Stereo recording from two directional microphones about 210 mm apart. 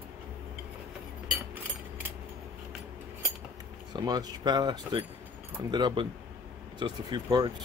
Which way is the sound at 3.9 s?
20° right (ahead or behind).